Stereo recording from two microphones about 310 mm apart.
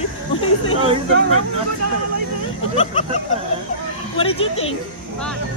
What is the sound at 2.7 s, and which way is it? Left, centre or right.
Speech, centre.